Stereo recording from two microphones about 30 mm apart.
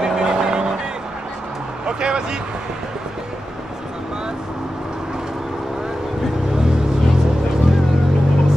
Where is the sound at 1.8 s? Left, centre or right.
Right.